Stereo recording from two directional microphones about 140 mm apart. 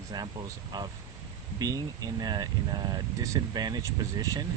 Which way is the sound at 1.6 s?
25° right (ahead or behind).